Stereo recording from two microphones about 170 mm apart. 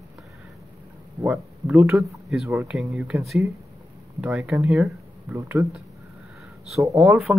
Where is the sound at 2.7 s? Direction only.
Centre (ahead or behind).